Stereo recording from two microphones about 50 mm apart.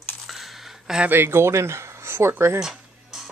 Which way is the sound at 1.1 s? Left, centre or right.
Right.